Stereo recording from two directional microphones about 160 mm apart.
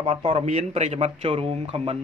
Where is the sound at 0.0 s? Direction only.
35° right (ahead or behind).